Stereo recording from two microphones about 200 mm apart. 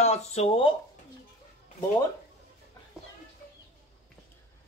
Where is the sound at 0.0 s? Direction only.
35° left (ahead or behind).